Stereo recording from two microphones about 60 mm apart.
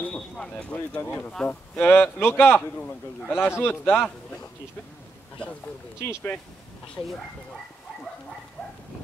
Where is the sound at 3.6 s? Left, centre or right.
Left.